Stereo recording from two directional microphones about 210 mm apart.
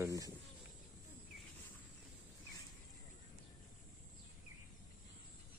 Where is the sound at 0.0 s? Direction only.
15° right (ahead or behind).